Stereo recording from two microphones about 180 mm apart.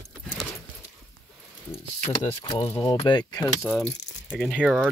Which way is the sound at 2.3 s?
30° left (ahead or behind).